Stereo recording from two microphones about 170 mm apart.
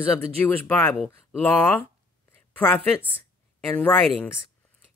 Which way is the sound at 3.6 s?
5° left (ahead or behind).